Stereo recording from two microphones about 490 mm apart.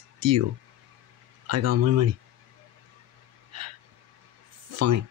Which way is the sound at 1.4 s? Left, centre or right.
Right.